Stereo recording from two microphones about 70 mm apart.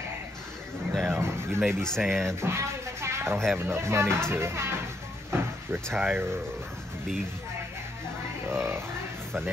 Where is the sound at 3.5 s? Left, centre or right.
Right.